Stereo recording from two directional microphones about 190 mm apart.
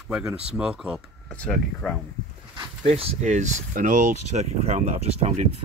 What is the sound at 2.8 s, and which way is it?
Speech, 35° right (ahead or behind).